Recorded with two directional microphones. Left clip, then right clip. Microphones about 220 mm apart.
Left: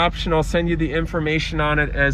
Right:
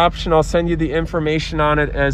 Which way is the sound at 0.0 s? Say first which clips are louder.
Right 5 dB; 10° right (ahead or behind).